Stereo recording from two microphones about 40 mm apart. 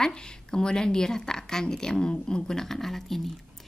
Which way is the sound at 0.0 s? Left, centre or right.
Centre.